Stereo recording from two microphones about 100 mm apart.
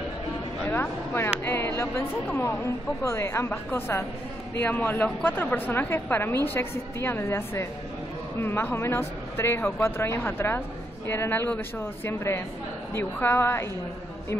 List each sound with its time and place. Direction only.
0.7 s a woman's voice: 25° left (ahead or behind)